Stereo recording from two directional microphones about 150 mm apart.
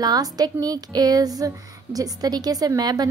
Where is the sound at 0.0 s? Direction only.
25° right (ahead or behind).